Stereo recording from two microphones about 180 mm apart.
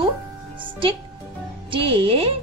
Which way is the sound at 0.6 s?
30° right (ahead or behind).